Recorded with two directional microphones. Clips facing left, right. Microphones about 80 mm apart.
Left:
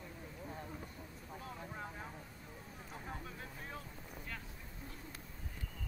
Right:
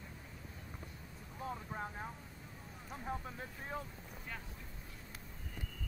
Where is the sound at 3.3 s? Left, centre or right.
Right.